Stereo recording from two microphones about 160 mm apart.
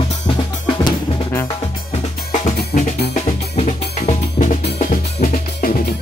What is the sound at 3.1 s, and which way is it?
Drum, 50° left (ahead or behind).